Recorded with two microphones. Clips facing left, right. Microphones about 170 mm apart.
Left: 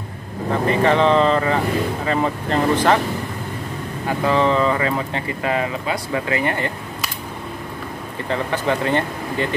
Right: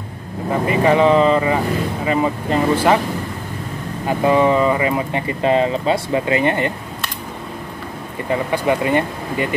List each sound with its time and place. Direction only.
0.5 s speech: 10° right (ahead or behind)
4.2 s speech: 15° right (ahead or behind)
8.3 s speech: 10° right (ahead or behind)